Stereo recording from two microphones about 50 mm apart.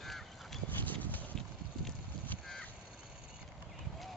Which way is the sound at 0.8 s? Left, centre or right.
Left.